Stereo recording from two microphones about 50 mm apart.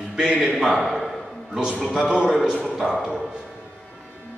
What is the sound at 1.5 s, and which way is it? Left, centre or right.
Speech, centre.